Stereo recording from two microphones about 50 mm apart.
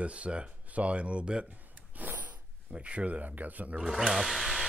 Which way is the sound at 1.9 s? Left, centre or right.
Right.